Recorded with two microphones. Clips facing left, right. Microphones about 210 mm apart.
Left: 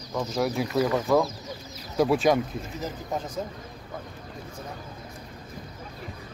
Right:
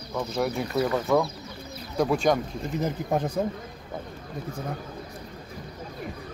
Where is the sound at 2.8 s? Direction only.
60° right (ahead or behind).